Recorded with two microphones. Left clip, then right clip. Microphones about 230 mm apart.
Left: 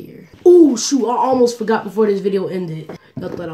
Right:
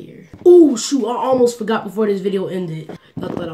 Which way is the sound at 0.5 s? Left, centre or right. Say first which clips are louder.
Right 1 dB; centre.